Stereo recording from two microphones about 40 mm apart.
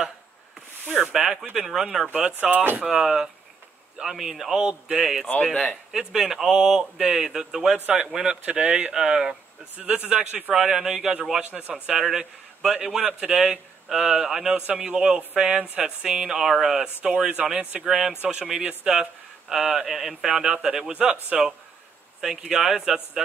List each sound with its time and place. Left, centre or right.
0.8 s a sound: right
1.1 s a man's voice: centre
2.5 s speech: right
2.9 s a man's voice: centre
5.3 s speech: left
5.9 s a man's voice: centre
8.5 s a man's voice: right
9.0 s a man's voice: centre
10.5 s a man's voice: centre
20.9 s a man's voice: right